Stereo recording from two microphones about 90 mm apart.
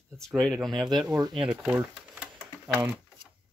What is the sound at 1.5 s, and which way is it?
Typewriter, 15° right (ahead or behind).